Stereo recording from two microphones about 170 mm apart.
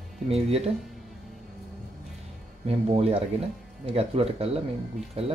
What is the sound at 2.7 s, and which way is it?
Speech, 35° right (ahead or behind).